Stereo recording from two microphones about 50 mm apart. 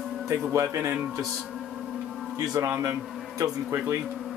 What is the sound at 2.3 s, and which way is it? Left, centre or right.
Speech, right.